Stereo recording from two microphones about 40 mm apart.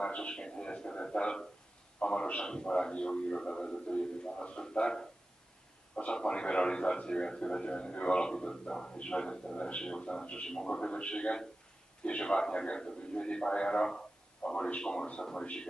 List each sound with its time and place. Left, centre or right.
0.0 s a man's voice: left
6.1 s a man's voice: left